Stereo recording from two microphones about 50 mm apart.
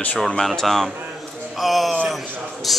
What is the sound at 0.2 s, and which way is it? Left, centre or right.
A man's voice, centre.